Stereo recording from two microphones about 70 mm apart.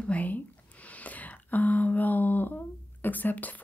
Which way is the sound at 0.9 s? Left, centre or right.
Left.